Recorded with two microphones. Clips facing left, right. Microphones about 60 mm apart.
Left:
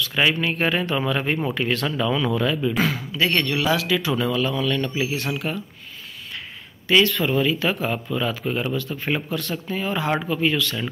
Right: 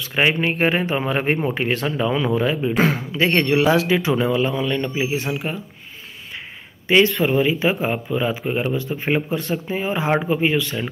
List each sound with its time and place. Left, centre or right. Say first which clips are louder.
0.1 s speech: right 4 dB; right
1.4 s speech: right 2 dB; centre
2.8 s a man's voice: right 4 dB; right; by 5.6 s centre
6.9 s a man's voice: right 3 dB; right